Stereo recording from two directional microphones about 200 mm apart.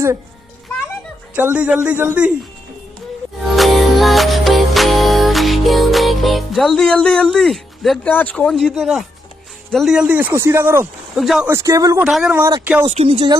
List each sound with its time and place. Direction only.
1.3 s speech: 10° right (ahead or behind)
3.5 s music: centre (ahead or behind)
9.7 s speech: centre (ahead or behind)
11.1 s speech: centre (ahead or behind)
11.5 s speech: 15° right (ahead or behind)
12.1 s speech: centre (ahead or behind)
12.4 s speech: 15° right (ahead or behind)
12.8 s speech: 30° right (ahead or behind)